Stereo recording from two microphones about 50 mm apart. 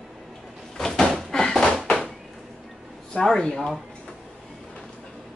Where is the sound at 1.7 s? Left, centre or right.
Centre.